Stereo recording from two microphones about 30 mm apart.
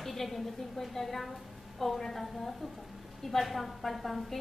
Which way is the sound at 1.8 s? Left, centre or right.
Centre.